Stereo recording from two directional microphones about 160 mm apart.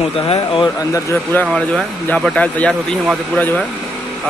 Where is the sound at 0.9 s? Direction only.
15° left (ahead or behind).